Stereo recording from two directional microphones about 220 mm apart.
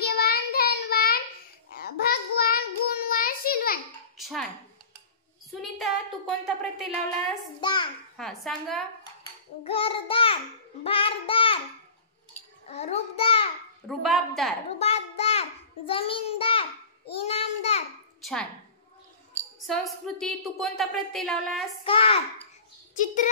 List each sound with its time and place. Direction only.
0.0 s child singing: 45° left (ahead or behind)
4.2 s a sound: centre (ahead or behind)
5.5 s a woman's voice: centre (ahead or behind)
7.6 s a child's voice: 20° left (ahead or behind)
8.2 s a woman's voice: centre (ahead or behind)
9.6 s a child's voice: 25° left (ahead or behind)
12.6 s a child's voice: 30° left (ahead or behind)
13.8 s a woman's voice: centre (ahead or behind)
14.8 s a child's voice: 30° left (ahead or behind)
18.2 s a woman's voice: centre (ahead or behind)
19.6 s a woman's voice: centre (ahead or behind)
21.8 s a child's voice: 25° left (ahead or behind)